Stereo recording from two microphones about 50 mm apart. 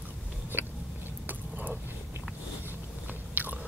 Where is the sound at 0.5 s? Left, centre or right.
Right.